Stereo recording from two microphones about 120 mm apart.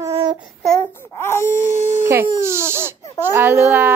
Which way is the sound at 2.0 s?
20° right (ahead or behind).